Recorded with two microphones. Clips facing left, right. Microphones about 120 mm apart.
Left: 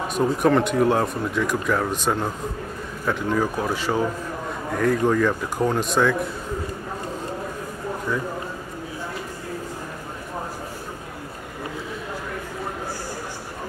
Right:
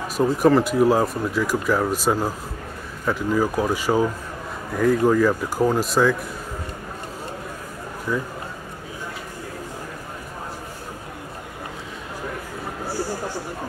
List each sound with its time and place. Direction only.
0.1 s speech: centre (ahead or behind)